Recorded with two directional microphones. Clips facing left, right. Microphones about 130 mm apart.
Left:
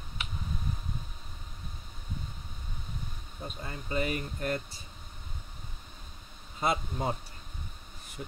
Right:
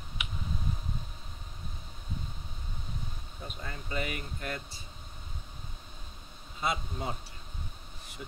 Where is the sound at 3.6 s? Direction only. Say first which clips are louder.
Left 4 dB; 30° left (ahead or behind).